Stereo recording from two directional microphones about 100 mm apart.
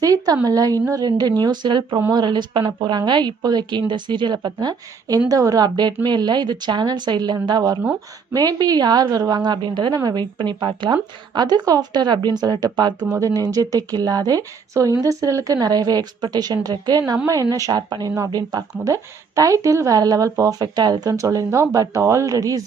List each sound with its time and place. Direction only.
0.0 s a woman's voice: 35° right (ahead or behind)